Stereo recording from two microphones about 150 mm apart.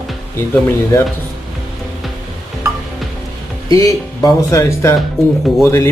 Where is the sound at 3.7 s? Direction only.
25° left (ahead or behind).